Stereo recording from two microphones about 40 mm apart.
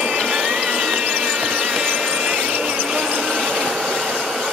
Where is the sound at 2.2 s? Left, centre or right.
Right.